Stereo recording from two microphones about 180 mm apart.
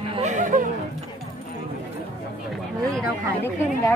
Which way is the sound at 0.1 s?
40° right (ahead or behind).